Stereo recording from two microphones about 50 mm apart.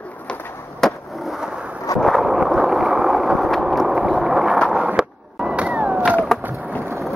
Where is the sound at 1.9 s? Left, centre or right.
Centre.